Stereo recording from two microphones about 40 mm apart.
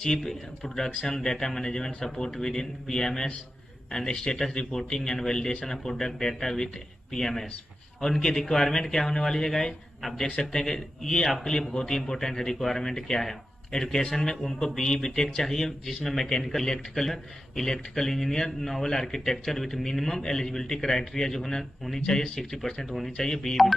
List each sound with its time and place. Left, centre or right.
0.0 s speech: centre
8.5 s speech: centre
10.2 s a man's voice: left